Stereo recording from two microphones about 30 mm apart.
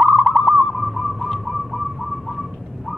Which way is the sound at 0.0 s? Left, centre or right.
Right.